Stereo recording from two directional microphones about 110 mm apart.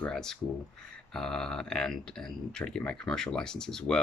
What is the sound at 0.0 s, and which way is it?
Speech, 5° left (ahead or behind).